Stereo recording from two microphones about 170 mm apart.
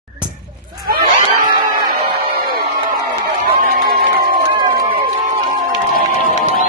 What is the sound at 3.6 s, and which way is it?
Crowd, 60° right (ahead or behind).